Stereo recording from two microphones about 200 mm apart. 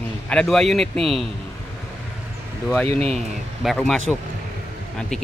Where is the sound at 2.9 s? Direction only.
30° right (ahead or behind).